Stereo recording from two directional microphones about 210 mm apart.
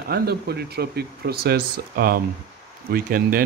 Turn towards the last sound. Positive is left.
turn(degrees=-45)  # may be behind; listen again after turning